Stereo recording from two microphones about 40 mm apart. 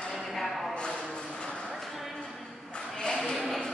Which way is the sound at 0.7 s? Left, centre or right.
Left.